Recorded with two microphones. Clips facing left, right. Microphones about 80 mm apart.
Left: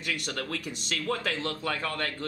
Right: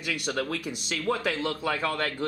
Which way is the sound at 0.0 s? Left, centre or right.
Centre.